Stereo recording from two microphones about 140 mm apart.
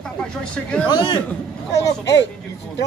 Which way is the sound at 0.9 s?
35° left (ahead or behind).